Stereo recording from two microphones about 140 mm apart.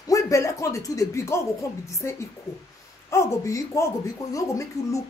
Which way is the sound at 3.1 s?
20° left (ahead or behind).